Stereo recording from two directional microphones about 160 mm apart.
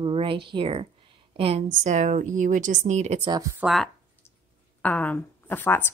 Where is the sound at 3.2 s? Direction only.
25° right (ahead or behind).